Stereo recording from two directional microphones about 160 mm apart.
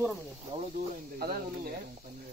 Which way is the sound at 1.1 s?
70° right (ahead or behind).